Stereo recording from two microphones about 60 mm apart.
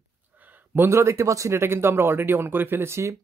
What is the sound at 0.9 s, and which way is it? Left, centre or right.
Speech, right.